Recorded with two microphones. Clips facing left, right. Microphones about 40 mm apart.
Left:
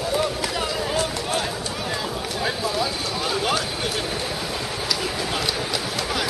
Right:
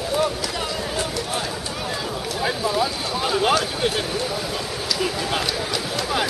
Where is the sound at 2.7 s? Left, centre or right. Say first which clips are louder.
Right 2 dB; centre.